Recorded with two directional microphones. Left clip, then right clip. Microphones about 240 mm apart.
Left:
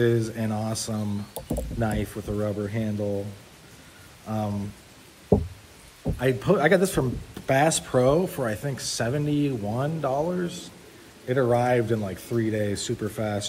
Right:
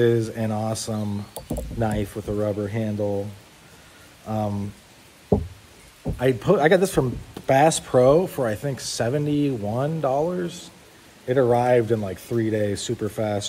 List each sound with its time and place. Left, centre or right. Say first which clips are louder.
0.0 s a man's voice: right 3 dB; right
4.3 s a man's voice: right 3 dB; right
5.3 s a sound: even; centre
6.1 s a man's voice: right 3 dB; right